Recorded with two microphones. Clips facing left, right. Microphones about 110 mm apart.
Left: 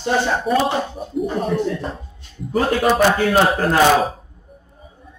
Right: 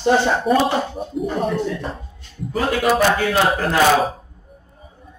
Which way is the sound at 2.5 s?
40° left (ahead or behind).